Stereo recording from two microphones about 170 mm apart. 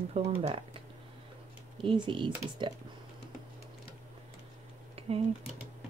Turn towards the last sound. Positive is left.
turn(degrees=-35)  # may be behind; listen again after turning